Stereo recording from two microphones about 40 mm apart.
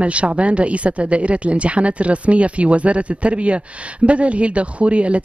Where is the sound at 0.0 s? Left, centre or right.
Right.